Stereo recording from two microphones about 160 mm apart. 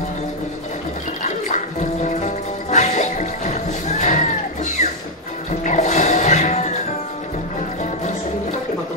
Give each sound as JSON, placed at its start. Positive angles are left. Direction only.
{"t": 1.2, "sound": "music", "side_deg": 50}
{"t": 5.6, "sound": "music", "side_deg": 45}
{"t": 7.8, "sound": "music", "side_deg": 50}